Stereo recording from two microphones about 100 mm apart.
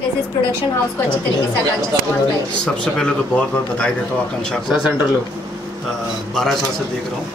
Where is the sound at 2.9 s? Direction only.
10° left (ahead or behind).